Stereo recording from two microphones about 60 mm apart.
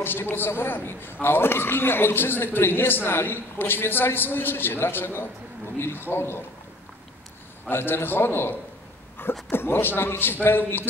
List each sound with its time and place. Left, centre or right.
0.0 s a man's voice: left
7.7 s a man's voice: left